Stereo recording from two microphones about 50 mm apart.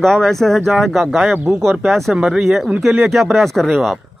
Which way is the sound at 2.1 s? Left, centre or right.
Centre.